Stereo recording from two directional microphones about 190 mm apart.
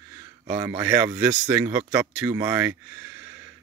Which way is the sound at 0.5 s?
15° right (ahead or behind).